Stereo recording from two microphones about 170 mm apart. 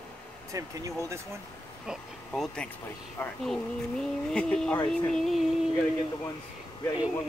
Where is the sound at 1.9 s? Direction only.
Centre (ahead or behind).